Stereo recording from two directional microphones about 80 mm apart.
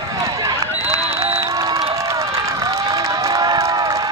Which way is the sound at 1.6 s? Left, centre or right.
Right.